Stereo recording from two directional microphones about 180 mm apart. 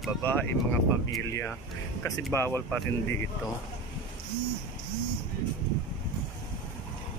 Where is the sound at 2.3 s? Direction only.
15° left (ahead or behind).